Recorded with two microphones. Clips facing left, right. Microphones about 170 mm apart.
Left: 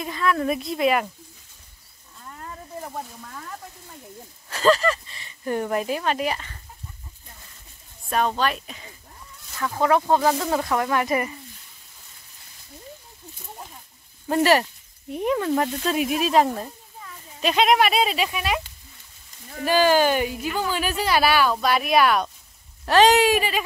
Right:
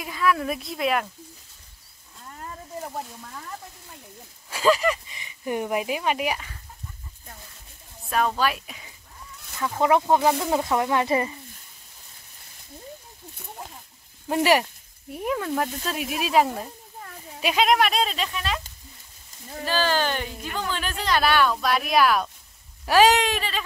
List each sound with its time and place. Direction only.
0.0 s speech: 5° right (ahead or behind)
2.9 s speech: 10° right (ahead or behind)
8.4 s speech: 5° right (ahead or behind)
9.6 s speech: 20° right (ahead or behind)
14.3 s speech: 10° right (ahead or behind)
15.2 s speech: centre (ahead or behind)
17.6 s speech: centre (ahead or behind)
19.6 s speech: 15° left (ahead or behind); by 23.1 s 10° right (ahead or behind)
23.1 s speech: 10° left (ahead or behind)